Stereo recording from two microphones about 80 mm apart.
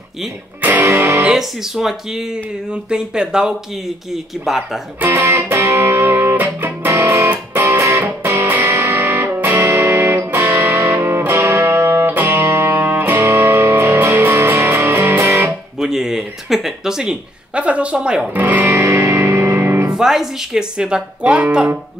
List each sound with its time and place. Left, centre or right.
0.6 s music: right
1.3 s speech: centre
5.1 s music: right
15.8 s speech: centre
18.3 s music: right
19.9 s speech: centre